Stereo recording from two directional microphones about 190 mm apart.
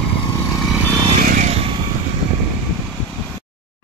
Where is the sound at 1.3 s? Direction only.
40° right (ahead or behind).